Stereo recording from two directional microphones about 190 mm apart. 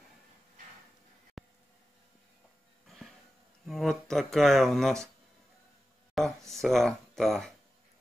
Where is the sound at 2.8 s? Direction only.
Centre (ahead or behind).